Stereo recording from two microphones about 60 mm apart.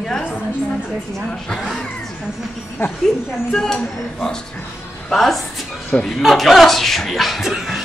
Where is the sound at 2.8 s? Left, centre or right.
Left.